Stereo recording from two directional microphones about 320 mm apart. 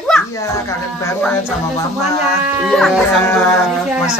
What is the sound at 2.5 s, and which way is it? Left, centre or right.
Speech, centre.